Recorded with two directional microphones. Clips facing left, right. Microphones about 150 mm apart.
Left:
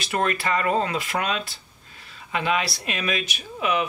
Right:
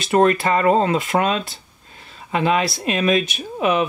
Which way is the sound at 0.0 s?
30° right (ahead or behind).